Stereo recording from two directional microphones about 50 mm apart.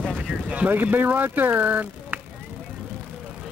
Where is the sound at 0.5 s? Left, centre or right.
Right.